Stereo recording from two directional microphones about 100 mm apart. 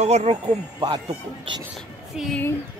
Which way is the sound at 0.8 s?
55° right (ahead or behind).